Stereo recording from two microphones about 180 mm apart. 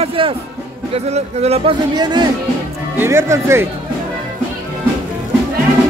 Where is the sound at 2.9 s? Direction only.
15° right (ahead or behind).